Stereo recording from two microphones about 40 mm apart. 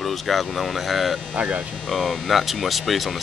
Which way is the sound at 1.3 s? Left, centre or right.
Right.